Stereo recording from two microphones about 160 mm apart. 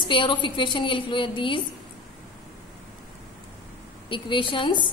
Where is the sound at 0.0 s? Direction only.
30° left (ahead or behind).